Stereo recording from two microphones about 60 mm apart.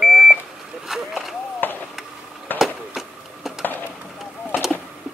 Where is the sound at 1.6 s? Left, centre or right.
Left.